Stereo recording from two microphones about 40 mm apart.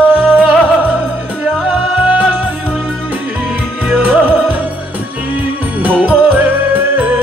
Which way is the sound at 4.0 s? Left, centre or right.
Right.